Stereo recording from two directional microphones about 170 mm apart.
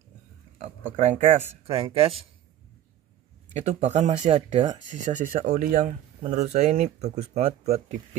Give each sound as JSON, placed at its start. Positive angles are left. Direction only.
{"t": 0.9, "sound": "speech", "side_deg": -40}
{"t": 3.5, "sound": "speech", "side_deg": -40}
{"t": 6.2, "sound": "speech", "side_deg": -40}